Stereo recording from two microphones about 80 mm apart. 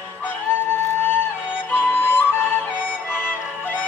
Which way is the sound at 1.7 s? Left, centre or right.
Left.